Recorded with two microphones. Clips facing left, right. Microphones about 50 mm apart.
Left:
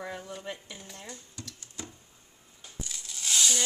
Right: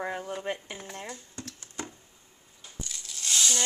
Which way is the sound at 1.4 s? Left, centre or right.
Right.